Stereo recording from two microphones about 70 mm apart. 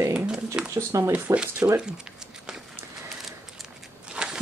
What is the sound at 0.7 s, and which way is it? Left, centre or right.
Speech, right.